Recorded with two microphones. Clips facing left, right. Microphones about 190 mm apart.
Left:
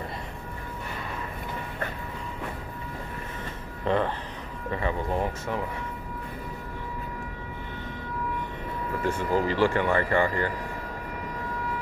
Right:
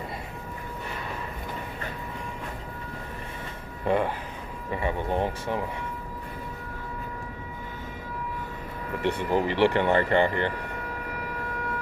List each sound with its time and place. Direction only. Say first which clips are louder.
3.8 s speech: right 1 dB; 10° right (ahead or behind)
9.3 s speech: right 1 dB; 20° right (ahead or behind)